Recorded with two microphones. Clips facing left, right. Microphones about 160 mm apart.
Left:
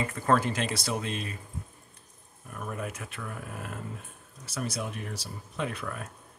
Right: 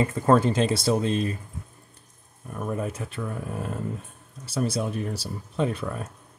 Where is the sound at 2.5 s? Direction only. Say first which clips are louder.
Right 7 dB; 30° right (ahead or behind).